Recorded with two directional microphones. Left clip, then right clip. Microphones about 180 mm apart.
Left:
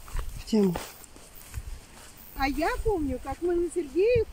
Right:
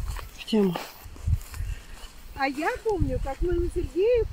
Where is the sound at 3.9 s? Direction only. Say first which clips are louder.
Right 1 dB; centre (ahead or behind).